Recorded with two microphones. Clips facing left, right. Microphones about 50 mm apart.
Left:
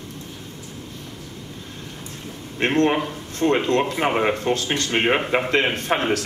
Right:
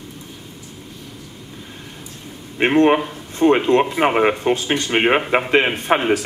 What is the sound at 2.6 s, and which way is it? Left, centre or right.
A man's voice, centre.